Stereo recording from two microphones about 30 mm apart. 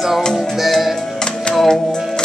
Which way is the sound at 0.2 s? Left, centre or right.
Left.